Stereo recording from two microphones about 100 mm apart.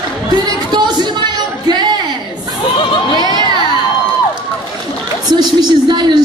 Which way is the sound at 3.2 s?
45° right (ahead or behind).